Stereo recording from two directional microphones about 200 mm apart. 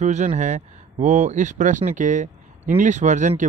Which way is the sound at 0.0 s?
35° right (ahead or behind).